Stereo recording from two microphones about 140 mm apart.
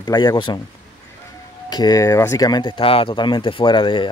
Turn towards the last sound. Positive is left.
turn(degrees=35)  # may be behind; listen again after turning